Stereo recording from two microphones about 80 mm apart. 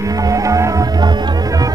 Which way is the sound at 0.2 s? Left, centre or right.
Right.